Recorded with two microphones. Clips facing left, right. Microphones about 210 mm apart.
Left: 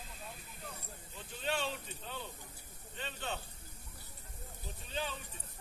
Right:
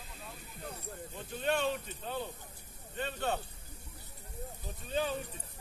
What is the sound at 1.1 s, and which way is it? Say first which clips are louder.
A man's voice: right 5 dB; 55° right (ahead or behind).